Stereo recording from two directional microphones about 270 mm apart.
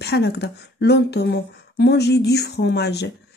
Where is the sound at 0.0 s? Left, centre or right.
Left.